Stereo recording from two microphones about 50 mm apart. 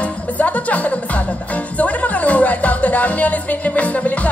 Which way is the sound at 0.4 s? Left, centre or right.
Left.